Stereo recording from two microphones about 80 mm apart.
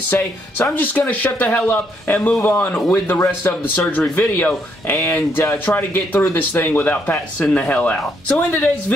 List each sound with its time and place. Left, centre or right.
0.1 s speech: left
5.4 s speech: left